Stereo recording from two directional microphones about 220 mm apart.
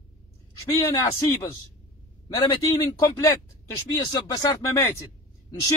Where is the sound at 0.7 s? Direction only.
15° left (ahead or behind).